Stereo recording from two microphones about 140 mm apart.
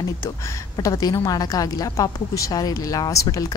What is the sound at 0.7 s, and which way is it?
Speech, 25° left (ahead or behind).